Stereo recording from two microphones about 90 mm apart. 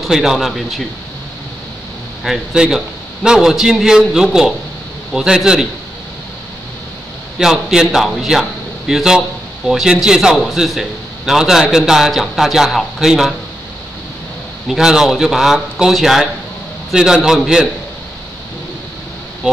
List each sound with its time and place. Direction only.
0.0 s a man's voice: 5° right (ahead or behind)
2.2 s a man's voice: 5° right (ahead or behind)
7.3 s a man's voice: 5° right (ahead or behind)
14.7 s a man's voice: 5° right (ahead or behind)
19.4 s a man's voice: 10° right (ahead or behind)